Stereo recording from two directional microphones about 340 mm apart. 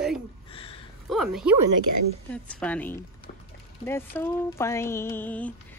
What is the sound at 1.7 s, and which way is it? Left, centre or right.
Speech, right.